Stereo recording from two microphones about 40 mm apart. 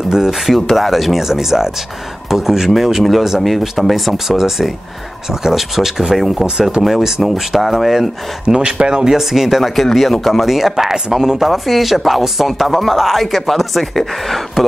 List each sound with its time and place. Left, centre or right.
0.1 s speech: centre
0.5 s speech: centre
8.5 s speech: right; by 10.4 s centre
10.4 s speech: centre